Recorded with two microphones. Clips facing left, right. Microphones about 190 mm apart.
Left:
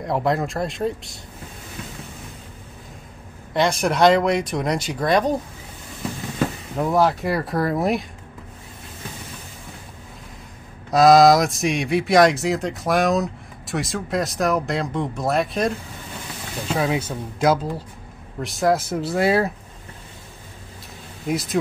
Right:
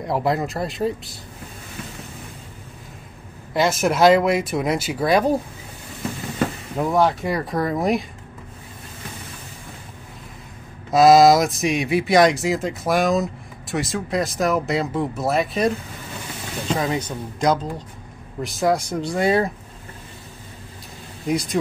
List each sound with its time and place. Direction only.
0.0 s speech: centre (ahead or behind)
3.5 s speech: 5° right (ahead or behind)
6.8 s speech: centre (ahead or behind)
10.9 s speech: centre (ahead or behind)
21.3 s speech: centre (ahead or behind)